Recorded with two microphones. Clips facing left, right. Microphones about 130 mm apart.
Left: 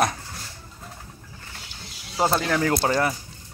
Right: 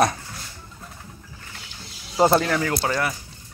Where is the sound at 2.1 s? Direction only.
15° right (ahead or behind).